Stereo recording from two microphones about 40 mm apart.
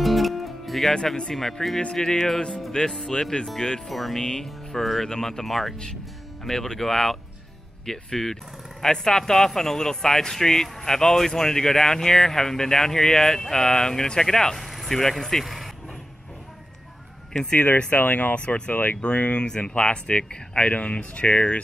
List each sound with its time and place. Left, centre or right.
0.0 s music: centre
1.3 s speech: centre
3.8 s speech: centre
4.2 s speech: centre
14.6 s speech: centre
17.9 s speech: left
18.3 s speech: left
19.1 s speech: left